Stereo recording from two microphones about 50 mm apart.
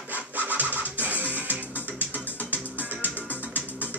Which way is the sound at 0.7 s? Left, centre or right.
Left.